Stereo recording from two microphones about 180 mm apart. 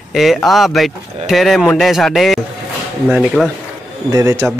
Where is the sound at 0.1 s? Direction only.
Centre (ahead or behind).